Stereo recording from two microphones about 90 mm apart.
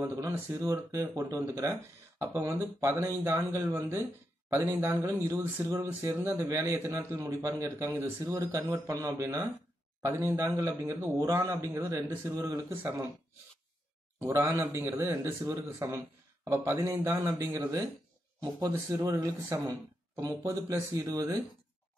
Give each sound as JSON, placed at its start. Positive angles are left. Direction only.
{"t": 0.0, "sound": "a man's voice", "side_deg": -35}
{"t": 14.2, "sound": "a man's voice", "side_deg": -30}
{"t": 17.2, "sound": "a man's voice", "side_deg": -35}
{"t": 18.4, "sound": "speech", "side_deg": -40}